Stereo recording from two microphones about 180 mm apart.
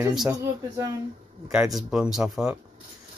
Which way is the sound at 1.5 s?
5° right (ahead or behind).